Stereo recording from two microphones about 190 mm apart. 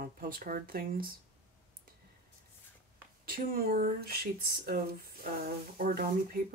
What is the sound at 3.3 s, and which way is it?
Speech, 50° right (ahead or behind).